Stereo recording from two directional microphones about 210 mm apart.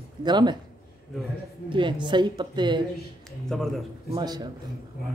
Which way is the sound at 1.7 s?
25° right (ahead or behind).